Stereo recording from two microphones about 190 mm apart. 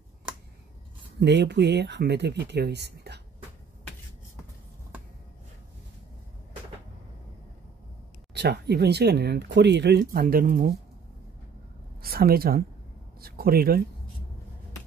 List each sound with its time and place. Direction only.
1.2 s speech: 65° right (ahead or behind)
8.4 s speech: 60° right (ahead or behind)
12.0 s speech: 50° right (ahead or behind)